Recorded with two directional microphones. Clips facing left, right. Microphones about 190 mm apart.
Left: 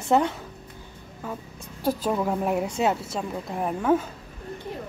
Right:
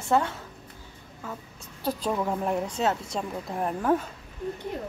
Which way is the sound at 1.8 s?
5° left (ahead or behind).